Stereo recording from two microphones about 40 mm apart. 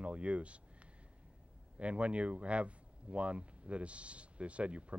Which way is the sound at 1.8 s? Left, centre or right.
Right.